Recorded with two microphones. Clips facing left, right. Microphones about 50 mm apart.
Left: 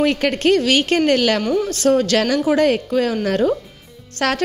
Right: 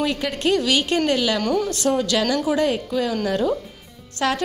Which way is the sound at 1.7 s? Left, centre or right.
Left.